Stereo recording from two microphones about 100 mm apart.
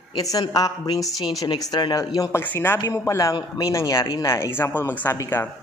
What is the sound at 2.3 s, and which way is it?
Speech, 20° left (ahead or behind).